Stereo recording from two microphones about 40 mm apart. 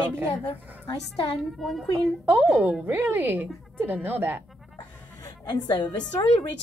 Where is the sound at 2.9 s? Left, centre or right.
Right.